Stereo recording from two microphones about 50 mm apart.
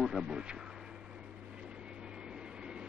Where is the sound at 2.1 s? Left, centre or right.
Centre.